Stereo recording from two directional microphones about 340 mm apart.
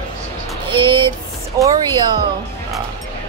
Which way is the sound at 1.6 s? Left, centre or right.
Centre.